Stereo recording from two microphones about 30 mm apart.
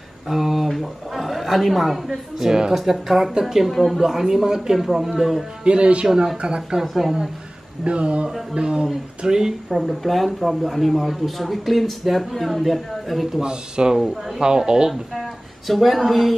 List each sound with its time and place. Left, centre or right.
0.3 s speech: centre
3.7 s speech: centre
4.0 s speech: centre
5.6 s speech: right
6.8 s speech: centre
7.8 s speech: right
9.2 s speech: right
9.5 s speech: centre
13.4 s speech: right
13.9 s speech: centre
14.4 s speech: right
14.9 s a sound: centre
15.7 s speech: centre